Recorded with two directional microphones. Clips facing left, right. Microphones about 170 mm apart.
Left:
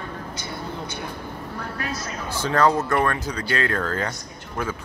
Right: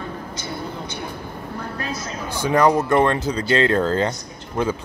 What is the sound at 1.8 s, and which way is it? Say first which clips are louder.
A man's voice: right 1 dB; 15° right (ahead or behind).